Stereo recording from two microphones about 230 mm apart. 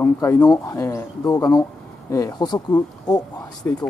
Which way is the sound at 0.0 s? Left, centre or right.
Centre.